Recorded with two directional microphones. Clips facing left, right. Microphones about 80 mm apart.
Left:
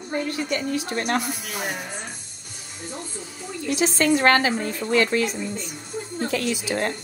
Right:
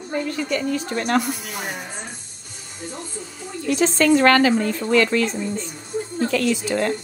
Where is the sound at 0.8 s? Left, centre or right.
Centre.